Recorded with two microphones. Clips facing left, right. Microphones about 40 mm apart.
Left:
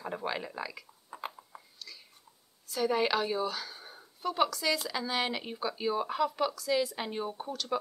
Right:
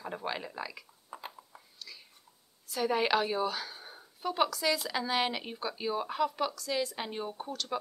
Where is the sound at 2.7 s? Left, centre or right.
Centre.